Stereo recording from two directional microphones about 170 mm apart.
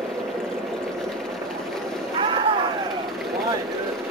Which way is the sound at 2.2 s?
30° right (ahead or behind).